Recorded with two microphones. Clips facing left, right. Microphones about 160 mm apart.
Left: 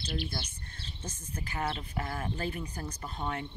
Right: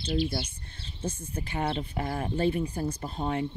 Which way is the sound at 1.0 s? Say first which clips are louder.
Right 8 dB; 30° right (ahead or behind).